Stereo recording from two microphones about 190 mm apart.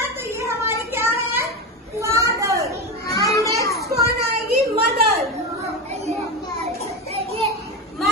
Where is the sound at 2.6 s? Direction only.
20° left (ahead or behind).